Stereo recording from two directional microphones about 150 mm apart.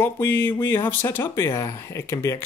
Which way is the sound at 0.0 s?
15° left (ahead or behind).